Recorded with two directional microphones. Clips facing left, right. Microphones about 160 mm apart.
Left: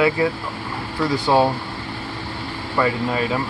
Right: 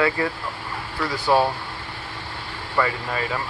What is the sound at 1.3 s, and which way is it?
Speech, 25° left (ahead or behind).